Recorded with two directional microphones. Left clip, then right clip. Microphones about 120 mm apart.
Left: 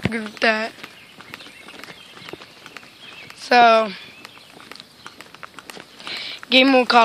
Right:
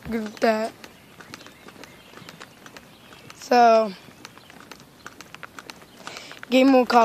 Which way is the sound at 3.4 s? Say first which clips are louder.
Left 3 dB; 10° right (ahead or behind).